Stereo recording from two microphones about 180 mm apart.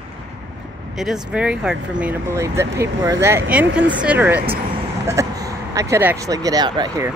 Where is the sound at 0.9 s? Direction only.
5° right (ahead or behind); by 7.1 s 20° right (ahead or behind).